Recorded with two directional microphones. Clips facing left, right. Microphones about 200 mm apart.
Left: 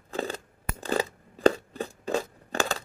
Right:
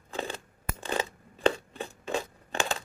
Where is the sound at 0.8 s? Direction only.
40° left (ahead or behind).